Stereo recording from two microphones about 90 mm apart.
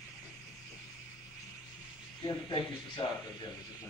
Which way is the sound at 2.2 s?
60° left (ahead or behind).